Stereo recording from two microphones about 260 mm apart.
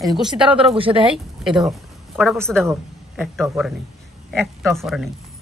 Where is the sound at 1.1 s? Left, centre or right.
Centre.